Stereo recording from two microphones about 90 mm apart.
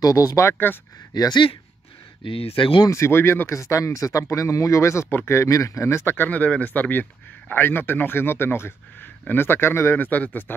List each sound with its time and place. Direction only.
0.0 s speech: 40° left (ahead or behind)
1.1 s speech: 45° left (ahead or behind)
2.2 s speech: 85° left
2.9 s speech: 30° left (ahead or behind)